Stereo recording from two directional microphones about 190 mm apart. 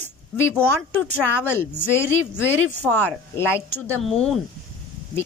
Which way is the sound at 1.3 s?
10° left (ahead or behind).